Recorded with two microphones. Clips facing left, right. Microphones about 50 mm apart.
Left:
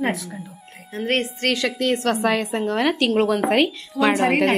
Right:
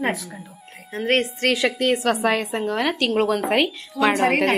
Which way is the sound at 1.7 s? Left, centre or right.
Centre.